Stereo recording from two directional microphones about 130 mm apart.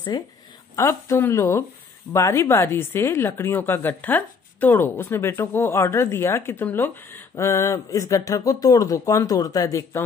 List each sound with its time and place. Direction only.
0.1 s speech: 35° left (ahead or behind)
0.7 s a woman's voice: 20° left (ahead or behind)